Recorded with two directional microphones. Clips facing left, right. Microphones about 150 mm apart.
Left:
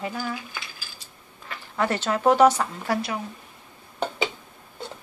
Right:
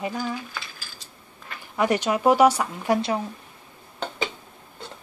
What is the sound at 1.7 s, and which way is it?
Speech, 15° right (ahead or behind).